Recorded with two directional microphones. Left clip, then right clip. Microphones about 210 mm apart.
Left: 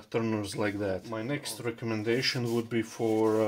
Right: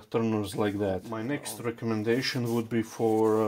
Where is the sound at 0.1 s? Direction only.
25° right (ahead or behind).